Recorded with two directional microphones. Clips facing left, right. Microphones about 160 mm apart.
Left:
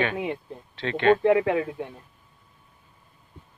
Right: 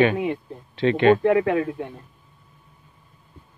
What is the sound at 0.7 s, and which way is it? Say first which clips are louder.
Speech: right 4 dB; 15° right (ahead or behind).